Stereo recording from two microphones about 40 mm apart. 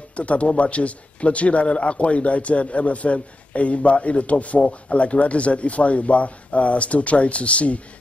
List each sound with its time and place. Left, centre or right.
0.1 s a man's voice: left